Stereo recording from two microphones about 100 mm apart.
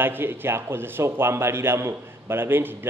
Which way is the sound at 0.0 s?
20° right (ahead or behind).